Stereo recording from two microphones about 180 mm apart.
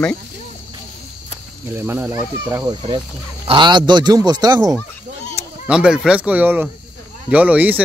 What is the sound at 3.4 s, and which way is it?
A man's voice, 25° right (ahead or behind).